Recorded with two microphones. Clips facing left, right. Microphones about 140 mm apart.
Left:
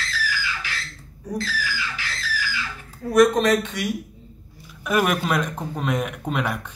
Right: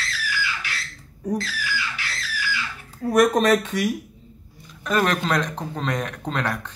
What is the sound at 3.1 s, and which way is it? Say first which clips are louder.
Speech: left 1 dB; 45° right (ahead or behind).